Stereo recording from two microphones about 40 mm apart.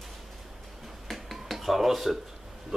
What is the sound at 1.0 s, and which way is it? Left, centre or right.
Finger snapping, centre.